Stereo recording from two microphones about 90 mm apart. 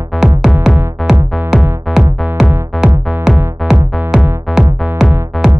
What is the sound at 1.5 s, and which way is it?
Music, 5° right (ahead or behind).